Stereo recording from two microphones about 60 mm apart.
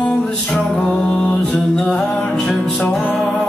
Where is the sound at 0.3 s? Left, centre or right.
Centre.